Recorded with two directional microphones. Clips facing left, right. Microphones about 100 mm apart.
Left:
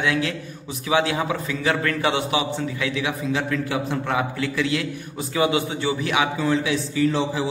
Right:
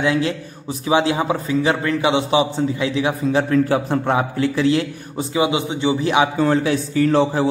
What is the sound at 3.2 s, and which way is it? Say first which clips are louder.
A man's voice: right 10 dB; 40° right (ahead or behind).